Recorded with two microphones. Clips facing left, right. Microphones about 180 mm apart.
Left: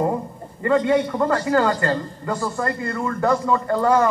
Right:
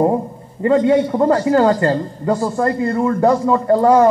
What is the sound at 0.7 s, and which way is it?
A man's voice, 30° right (ahead or behind).